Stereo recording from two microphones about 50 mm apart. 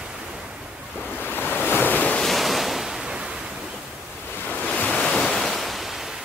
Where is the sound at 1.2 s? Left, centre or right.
Left.